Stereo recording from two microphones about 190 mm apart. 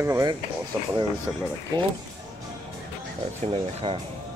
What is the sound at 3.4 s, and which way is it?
Speech, 30° right (ahead or behind).